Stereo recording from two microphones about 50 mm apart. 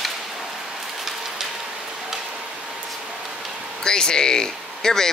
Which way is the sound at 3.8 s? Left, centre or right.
Centre.